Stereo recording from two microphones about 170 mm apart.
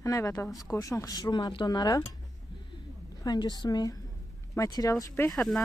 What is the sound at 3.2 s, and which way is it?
Speech, 25° left (ahead or behind).